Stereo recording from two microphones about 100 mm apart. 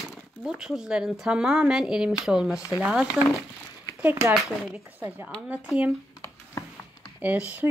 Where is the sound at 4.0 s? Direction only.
20° right (ahead or behind).